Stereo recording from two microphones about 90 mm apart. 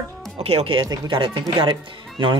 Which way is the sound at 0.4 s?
90° right.